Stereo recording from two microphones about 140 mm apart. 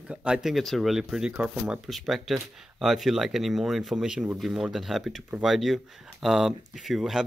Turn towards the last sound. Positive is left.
turn(degrees=0)  # may be behind; listen again after turning